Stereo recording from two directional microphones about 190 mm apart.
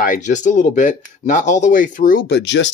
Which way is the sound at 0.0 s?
40° left (ahead or behind).